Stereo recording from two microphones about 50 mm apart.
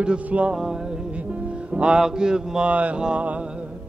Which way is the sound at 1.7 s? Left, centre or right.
Right.